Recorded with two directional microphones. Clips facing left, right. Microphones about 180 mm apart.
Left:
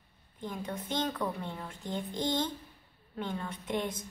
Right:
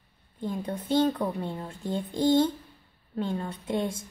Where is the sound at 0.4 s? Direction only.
30° right (ahead or behind).